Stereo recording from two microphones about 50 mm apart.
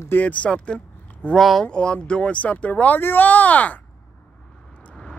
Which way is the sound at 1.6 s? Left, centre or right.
Centre.